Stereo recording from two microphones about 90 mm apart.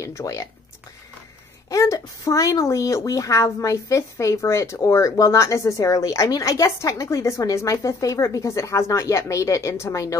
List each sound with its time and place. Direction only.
0.0 s speech: 35° left (ahead or behind)
1.7 s speech: 35° left (ahead or behind)